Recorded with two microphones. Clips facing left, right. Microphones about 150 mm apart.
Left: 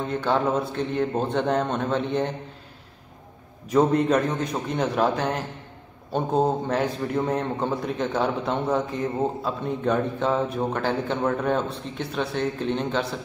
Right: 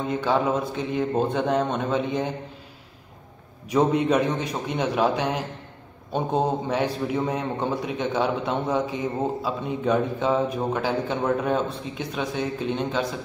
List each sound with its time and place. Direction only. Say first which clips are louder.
0.1 s a man's voice: even; 5° right (ahead or behind)
3.7 s a man's voice: left 1 dB; 5° right (ahead or behind)